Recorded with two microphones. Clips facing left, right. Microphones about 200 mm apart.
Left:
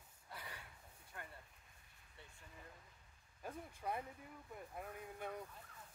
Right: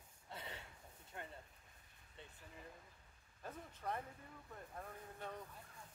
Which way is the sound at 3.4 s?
10° left (ahead or behind).